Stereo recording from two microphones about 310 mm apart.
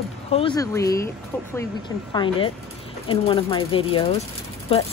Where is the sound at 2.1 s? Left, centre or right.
Centre.